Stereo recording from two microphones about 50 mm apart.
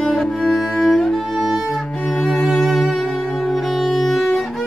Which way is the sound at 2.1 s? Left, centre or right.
Centre.